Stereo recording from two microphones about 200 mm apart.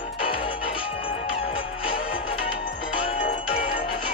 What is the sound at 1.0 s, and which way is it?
Music, 30° left (ahead or behind).